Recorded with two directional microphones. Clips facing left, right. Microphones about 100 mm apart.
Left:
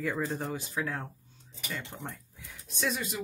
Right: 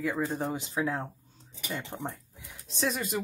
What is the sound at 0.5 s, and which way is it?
Speech, 20° right (ahead or behind).